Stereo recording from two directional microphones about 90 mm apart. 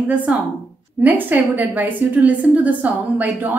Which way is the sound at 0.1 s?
15° right (ahead or behind).